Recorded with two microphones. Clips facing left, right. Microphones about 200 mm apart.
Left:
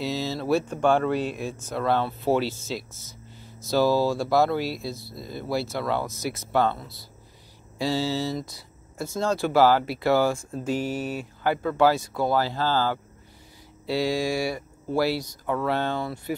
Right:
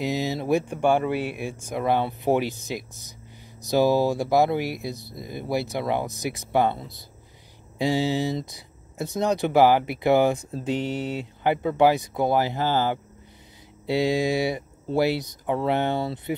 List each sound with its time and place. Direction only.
0.0 s speech: 15° right (ahead or behind)